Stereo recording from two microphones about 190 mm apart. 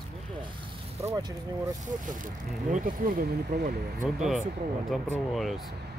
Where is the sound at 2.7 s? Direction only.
45° right (ahead or behind).